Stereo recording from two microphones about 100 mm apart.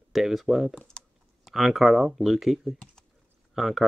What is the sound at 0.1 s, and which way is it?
Speech, centre (ahead or behind).